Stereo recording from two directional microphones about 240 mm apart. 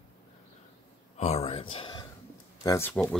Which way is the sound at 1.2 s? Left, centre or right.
Left.